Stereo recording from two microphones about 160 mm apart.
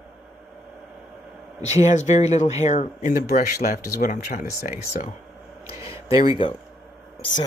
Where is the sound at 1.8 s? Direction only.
45° left (ahead or behind); by 4.7 s 60° left (ahead or behind).